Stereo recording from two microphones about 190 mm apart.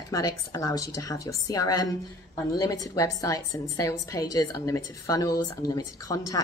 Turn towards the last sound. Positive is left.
turn(degrees=20)  # may be behind; listen again after turning